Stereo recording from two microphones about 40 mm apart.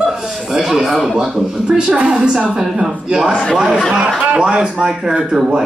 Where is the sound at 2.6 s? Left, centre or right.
Centre.